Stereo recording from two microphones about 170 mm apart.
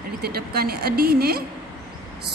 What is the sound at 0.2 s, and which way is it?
A woman's voice, 65° right (ahead or behind).